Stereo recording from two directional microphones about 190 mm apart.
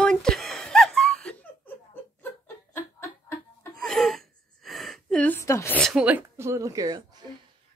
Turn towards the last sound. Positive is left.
turn(degrees=-20)  # may be behind; listen again after turning